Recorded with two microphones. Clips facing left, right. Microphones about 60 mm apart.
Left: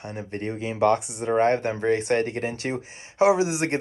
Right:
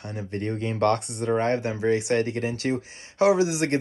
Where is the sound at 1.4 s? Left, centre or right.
Left.